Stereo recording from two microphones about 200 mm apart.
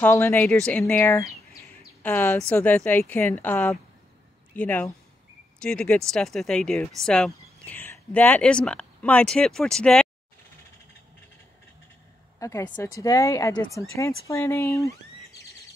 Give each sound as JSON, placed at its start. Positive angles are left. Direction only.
{"t": 0.0, "sound": "speech", "side_deg": 10}
{"t": 1.8, "sound": "a sound", "side_deg": 10}
{"t": 2.5, "sound": "speech", "side_deg": 10}
{"t": 12.4, "sound": "speech", "side_deg": 15}